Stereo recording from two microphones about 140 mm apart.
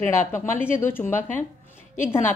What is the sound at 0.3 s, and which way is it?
Speech, 15° left (ahead or behind).